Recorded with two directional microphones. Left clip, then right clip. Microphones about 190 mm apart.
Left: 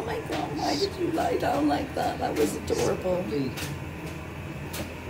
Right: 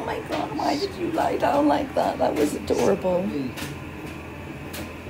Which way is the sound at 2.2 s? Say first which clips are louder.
Right 4 dB; 50° right (ahead or behind).